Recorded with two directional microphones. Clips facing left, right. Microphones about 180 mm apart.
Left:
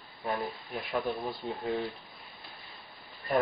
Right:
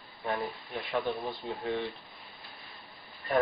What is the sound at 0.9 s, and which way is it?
Speech, centre (ahead or behind).